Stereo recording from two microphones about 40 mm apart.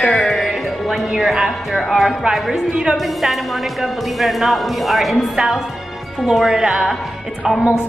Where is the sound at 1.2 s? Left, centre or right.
Centre.